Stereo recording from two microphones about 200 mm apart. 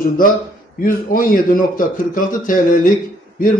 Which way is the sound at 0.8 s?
45° left (ahead or behind).